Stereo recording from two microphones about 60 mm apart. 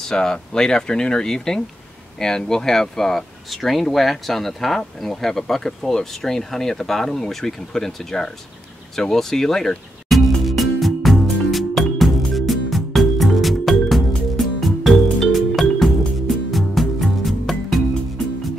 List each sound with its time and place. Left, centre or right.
0.0 s speech: centre
8.9 s music: centre